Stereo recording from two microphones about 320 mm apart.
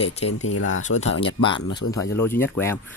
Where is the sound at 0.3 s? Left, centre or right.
Left.